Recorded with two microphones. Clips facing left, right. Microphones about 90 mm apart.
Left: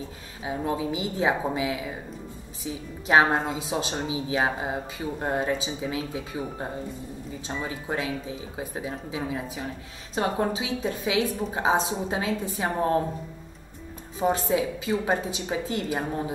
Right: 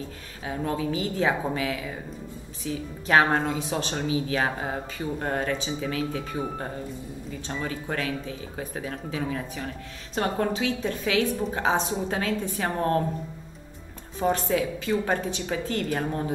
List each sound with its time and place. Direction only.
0.4 s a woman's voice: 15° left (ahead or behind)
14.2 s a woman's voice: 15° left (ahead or behind)